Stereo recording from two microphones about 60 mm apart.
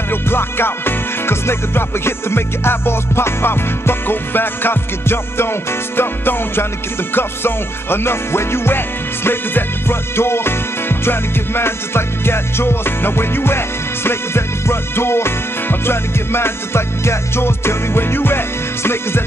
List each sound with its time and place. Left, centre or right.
0.1 s music: left